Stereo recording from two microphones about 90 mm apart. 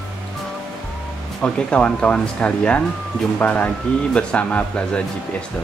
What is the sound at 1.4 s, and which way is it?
Speech, 10° left (ahead or behind).